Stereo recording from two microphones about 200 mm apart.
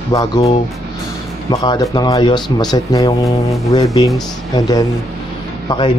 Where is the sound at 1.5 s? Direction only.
20° left (ahead or behind).